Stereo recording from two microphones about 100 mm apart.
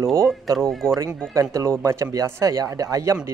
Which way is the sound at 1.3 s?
30° right (ahead or behind).